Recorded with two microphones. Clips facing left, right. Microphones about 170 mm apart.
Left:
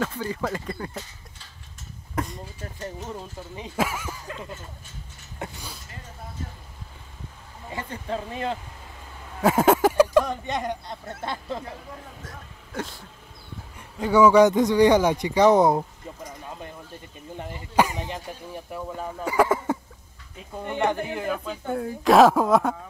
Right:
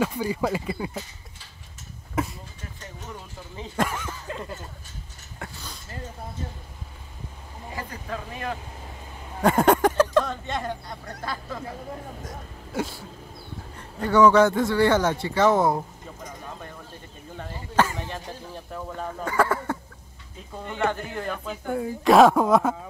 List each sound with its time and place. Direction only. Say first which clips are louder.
0.0 s speech: right 3 dB; 10° right (ahead or behind)
2.1 s vehicle: right 2 dB; 5° right (ahead or behind)
3.7 s speech: even; 5° left (ahead or behind)
5.4 s a sound: left 3 dB; 10° left (ahead or behind)
7.7 s speech: left 3 dB; 30° left (ahead or behind)
9.4 s speech: even; 5° left (ahead or behind); by 11.6 s 25° left (ahead or behind)
12.3 s speech: right 4 dB; 10° right (ahead or behind)
13.7 s a man's voice: even; 10° left (ahead or behind)
17.4 s a man's voice: left 1 dB; 15° left (ahead or behind)
21.7 s speech: even; centre (ahead or behind)